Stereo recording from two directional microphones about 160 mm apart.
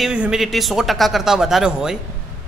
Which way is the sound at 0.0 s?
5° right (ahead or behind).